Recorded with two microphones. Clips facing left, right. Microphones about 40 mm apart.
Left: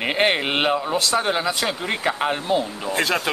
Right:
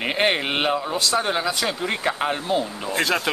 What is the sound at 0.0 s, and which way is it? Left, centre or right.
Speech, centre.